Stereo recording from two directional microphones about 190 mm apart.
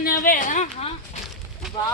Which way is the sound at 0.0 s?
45° left (ahead or behind).